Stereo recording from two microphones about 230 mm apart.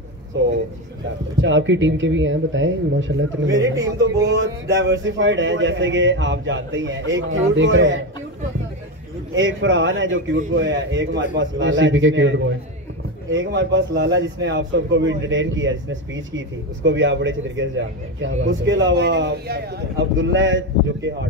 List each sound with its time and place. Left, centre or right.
0.3 s a man's voice: right
3.4 s speech: centre
4.4 s a man's voice: right
9.4 s a man's voice: right
20.2 s speech: right